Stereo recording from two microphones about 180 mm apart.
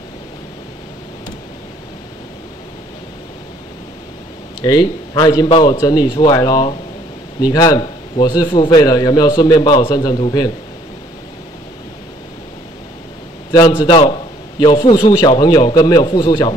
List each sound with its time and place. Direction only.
4.6 s a man's voice: 20° left (ahead or behind)
13.5 s a man's voice: 20° left (ahead or behind)